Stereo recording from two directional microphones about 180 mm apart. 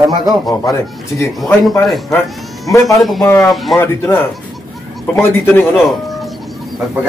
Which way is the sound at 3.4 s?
Centre (ahead or behind).